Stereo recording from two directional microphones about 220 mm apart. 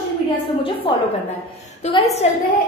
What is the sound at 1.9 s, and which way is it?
Speech, 30° left (ahead or behind).